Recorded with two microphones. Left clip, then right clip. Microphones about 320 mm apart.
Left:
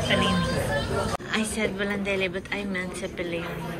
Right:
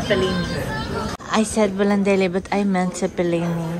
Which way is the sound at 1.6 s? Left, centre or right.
Right.